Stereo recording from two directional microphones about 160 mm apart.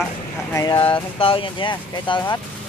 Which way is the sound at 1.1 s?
35° left (ahead or behind).